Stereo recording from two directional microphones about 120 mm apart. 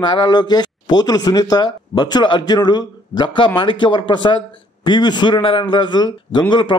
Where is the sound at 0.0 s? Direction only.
40° left (ahead or behind).